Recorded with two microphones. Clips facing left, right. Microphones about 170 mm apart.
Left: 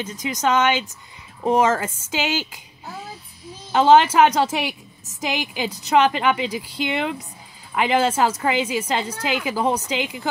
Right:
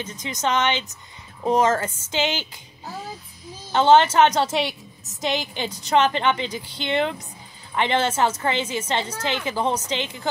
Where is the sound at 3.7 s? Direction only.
10° left (ahead or behind).